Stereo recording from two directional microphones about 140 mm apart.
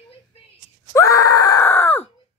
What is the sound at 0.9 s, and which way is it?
Groan, 25° left (ahead or behind).